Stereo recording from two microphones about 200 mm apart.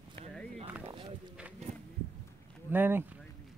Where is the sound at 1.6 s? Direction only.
35° right (ahead or behind).